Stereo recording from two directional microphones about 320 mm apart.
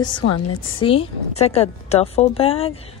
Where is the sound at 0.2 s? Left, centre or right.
Left.